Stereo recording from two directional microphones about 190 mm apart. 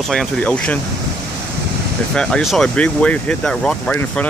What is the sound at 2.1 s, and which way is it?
Speech, 5° left (ahead or behind).